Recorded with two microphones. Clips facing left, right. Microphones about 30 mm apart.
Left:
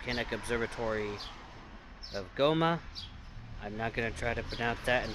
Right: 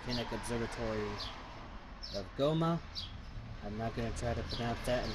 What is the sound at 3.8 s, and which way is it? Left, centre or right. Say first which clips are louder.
Speech: left 5 dB; left.